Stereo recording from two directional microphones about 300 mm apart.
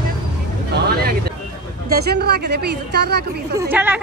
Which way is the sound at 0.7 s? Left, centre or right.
Right.